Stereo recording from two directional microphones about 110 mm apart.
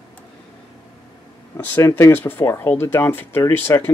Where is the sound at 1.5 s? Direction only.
20° left (ahead or behind).